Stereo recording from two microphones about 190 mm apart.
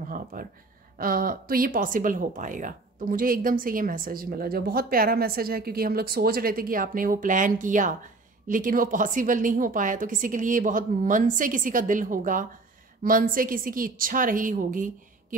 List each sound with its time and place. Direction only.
0.1 s speech: 45° right (ahead or behind)